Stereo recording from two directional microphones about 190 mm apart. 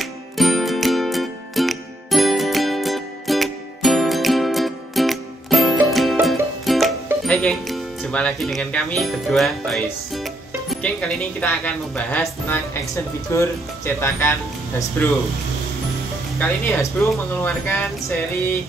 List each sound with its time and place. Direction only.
0.0 s music: centre (ahead or behind)
10.1 s speech: centre (ahead or behind)
16.3 s speech: 10° left (ahead or behind)